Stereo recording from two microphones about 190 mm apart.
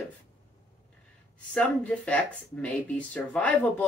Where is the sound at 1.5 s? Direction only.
5° left (ahead or behind).